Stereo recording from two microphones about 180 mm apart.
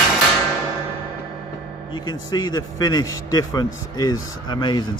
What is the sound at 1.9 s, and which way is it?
A man's voice, 25° left (ahead or behind).